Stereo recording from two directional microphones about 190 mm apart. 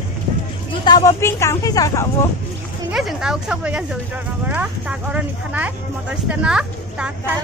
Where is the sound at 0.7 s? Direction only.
20° left (ahead or behind).